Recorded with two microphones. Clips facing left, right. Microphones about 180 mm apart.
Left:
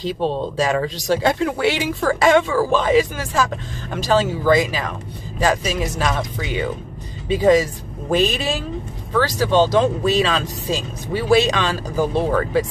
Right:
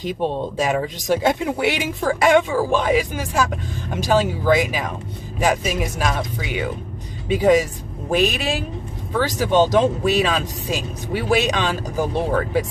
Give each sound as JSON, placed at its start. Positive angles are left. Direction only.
{"t": 0.0, "sound": "speech", "side_deg": -15}